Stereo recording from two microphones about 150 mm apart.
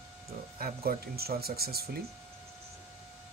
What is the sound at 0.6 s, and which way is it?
Speech, 80° right.